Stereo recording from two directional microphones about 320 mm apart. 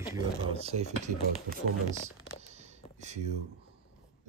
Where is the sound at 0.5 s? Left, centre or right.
Centre.